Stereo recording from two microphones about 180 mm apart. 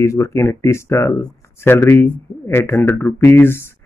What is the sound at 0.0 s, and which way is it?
Speech, 15° left (ahead or behind).